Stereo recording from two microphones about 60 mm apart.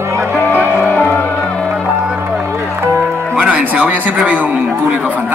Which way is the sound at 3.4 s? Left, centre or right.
Right.